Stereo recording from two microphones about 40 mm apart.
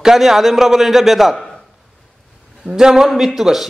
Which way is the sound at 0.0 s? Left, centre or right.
Centre.